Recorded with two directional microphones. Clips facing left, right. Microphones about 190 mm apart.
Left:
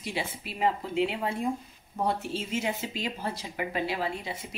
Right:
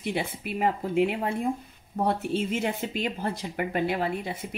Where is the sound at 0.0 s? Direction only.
55° right (ahead or behind).